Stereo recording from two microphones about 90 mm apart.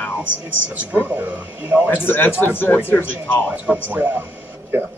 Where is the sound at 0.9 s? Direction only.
15° right (ahead or behind).